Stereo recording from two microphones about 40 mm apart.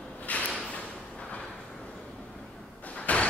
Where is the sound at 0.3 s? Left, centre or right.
Left.